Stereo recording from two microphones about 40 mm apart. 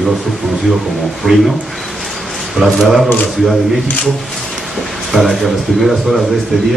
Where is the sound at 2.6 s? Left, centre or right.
Right.